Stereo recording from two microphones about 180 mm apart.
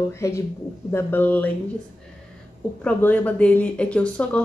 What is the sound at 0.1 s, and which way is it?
Speech, 15° left (ahead or behind).